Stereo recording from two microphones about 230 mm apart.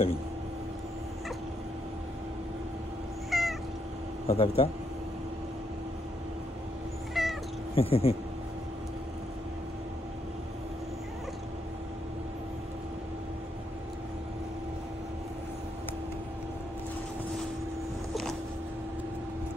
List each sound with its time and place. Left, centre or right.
3.3 s cat: centre
4.3 s speech: left
7.2 s cat: centre
7.7 s speech: left